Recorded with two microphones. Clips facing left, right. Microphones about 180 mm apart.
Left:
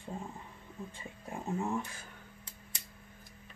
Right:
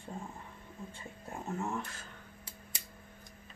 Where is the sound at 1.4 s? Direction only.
15° left (ahead or behind).